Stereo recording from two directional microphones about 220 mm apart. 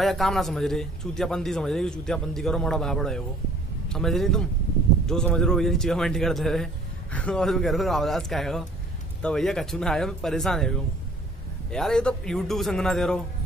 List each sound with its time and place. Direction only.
0.0 s a man's voice: centre (ahead or behind)